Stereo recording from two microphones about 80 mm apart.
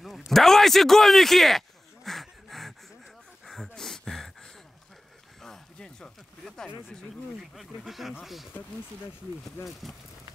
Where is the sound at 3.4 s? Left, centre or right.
Centre.